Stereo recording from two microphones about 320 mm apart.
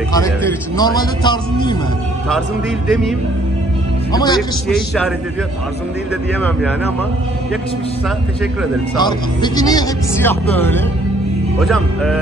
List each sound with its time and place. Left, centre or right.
0.1 s speech: centre
2.9 s a man's voice: centre
4.1 s a man's voice: centre
4.4 s a man's voice: centre
8.9 s a man's voice: centre